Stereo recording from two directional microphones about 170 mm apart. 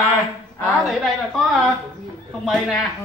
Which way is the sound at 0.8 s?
Centre (ahead or behind).